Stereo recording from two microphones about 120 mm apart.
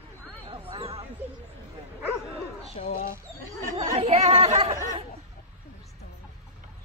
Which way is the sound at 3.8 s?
50° right (ahead or behind).